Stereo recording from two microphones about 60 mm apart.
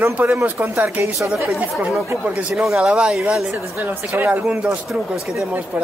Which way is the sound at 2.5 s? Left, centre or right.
Centre.